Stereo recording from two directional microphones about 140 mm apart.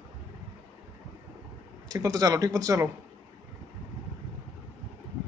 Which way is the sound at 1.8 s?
25° right (ahead or behind).